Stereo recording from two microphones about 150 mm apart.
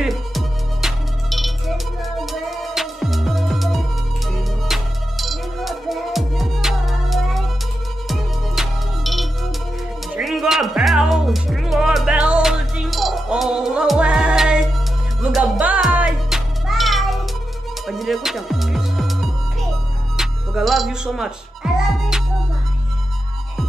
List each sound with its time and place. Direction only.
0.0 s music: centre (ahead or behind)